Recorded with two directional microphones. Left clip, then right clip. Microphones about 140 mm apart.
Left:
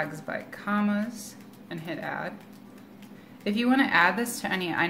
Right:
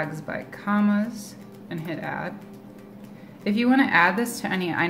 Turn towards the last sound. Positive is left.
turn(degrees=0)  # may be behind; listen again after turning